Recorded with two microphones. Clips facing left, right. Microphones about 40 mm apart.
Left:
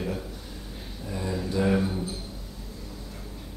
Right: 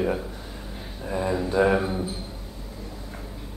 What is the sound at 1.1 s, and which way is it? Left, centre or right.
Speech, right.